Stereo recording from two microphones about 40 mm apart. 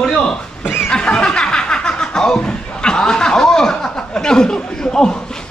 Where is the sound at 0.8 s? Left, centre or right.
Left.